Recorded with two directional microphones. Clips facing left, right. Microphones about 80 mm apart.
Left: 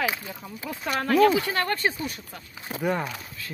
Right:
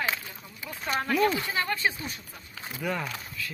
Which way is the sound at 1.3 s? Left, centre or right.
Left.